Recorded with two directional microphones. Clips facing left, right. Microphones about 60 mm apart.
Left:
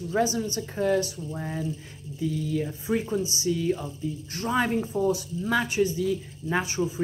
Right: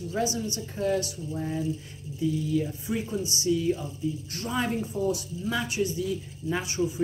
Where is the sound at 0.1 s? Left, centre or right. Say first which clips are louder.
Left 4 dB; left.